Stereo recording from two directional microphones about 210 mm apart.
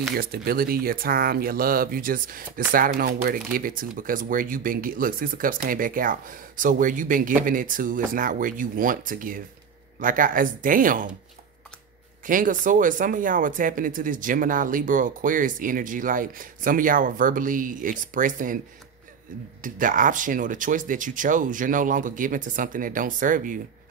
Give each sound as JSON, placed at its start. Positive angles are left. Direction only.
{"t": 0.2, "sound": "speech", "side_deg": -45}
{"t": 12.3, "sound": "speech", "side_deg": -40}
{"t": 19.6, "sound": "speech", "side_deg": -40}